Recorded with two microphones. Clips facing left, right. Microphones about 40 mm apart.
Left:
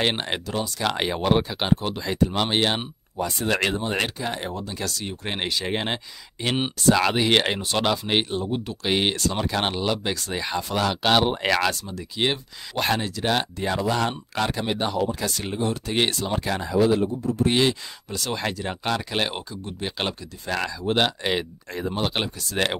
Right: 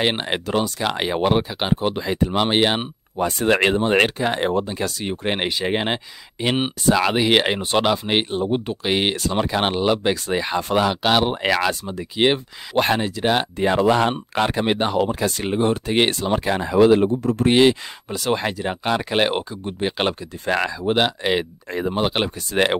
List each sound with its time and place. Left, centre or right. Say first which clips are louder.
0.0 s speech: right 3 dB; centre
1.8 s speech: right 3 dB; right
3.8 s speech: right 8 dB; right
4.6 s speech: right 5 dB; right
8.4 s speech: right 6 dB; right
8.8 s speech: even; centre
11.0 s speech: right 2 dB; centre
11.8 s speech: right 6 dB; right
13.6 s speech: right 7 dB; right
15.1 s speech: right 6 dB; right
16.7 s speech: right 6 dB; right
17.5 s speech: right 8 dB; right
19.0 s speech: right 7 dB; right
20.9 s speech: right 3 dB; centre